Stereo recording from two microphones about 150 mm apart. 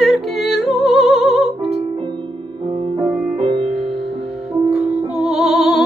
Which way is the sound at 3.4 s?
35° right (ahead or behind).